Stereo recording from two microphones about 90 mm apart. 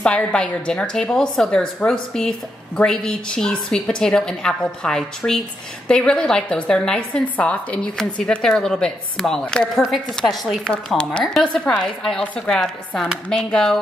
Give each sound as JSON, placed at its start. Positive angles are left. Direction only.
{"t": 0.0, "sound": "a woman's voice", "side_deg": 10}
{"t": 9.8, "sound": "a woman's voice", "side_deg": 0}